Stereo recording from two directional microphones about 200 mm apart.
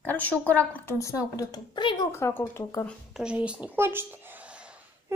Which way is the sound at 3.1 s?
5° right (ahead or behind).